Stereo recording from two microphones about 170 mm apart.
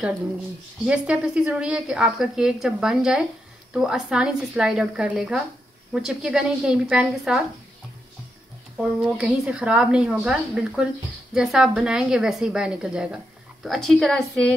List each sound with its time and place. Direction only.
0.8 s a woman's voice: 5° right (ahead or behind)
9.0 s a woman's voice: 5° right (ahead or behind)